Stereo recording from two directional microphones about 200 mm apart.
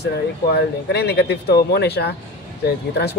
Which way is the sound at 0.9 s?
55° left (ahead or behind).